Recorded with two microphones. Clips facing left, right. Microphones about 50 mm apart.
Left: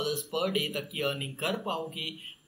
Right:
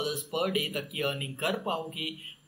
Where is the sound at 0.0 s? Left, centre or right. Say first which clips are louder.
Even; centre.